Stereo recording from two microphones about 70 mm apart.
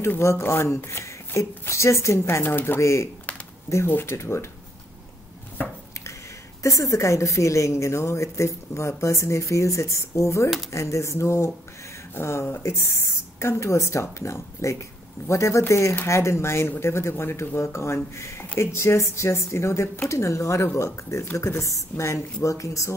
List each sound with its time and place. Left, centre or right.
0.0 s speech: left
2.4 s speech: left
2.8 s a woman's voice: left
6.6 s a woman's voice: left